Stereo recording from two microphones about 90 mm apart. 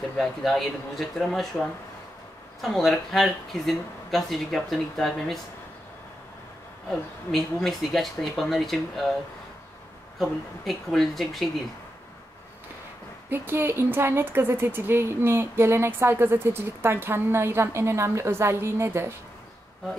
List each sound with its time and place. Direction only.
0.2 s speech: centre (ahead or behind)
6.9 s speech: 5° left (ahead or behind)
10.1 s speech: centre (ahead or behind)
13.3 s speech: 25° right (ahead or behind)